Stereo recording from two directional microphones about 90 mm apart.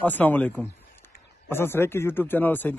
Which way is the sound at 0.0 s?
20° left (ahead or behind).